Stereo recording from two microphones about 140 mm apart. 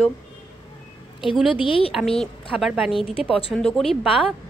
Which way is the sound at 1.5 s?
40° left (ahead or behind).